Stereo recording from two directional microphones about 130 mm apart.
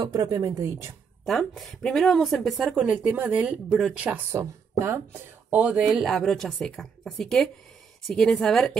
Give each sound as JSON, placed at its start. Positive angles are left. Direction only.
{"t": 0.0, "sound": "speech", "side_deg": -30}
{"t": 1.2, "sound": "speech", "side_deg": 0}
{"t": 4.3, "sound": "speech", "side_deg": -20}